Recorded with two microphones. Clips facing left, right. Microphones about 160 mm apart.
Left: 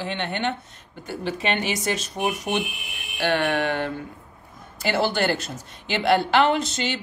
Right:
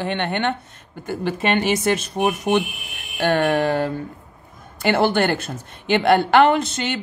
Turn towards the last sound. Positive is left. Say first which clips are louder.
# right 3 dB
turn(degrees=-55)  # may be behind; listen again after turning